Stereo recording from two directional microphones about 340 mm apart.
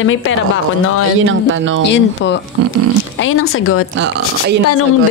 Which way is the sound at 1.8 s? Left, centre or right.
Left.